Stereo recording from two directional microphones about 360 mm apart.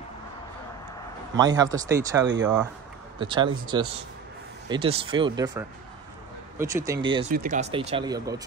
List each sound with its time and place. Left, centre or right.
1.3 s speech: centre
7.2 s speech: right